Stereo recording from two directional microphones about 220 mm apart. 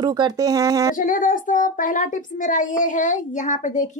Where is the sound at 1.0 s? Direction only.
40° left (ahead or behind).